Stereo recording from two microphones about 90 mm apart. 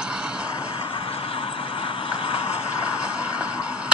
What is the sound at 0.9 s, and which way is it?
Vehicle, 90° left.